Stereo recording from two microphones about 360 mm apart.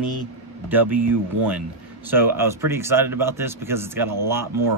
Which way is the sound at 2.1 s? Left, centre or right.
Centre.